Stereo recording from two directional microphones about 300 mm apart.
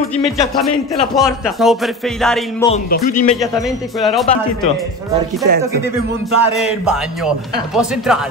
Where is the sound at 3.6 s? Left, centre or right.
Centre.